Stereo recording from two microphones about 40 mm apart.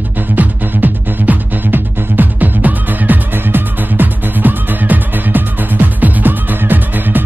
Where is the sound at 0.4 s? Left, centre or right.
Right.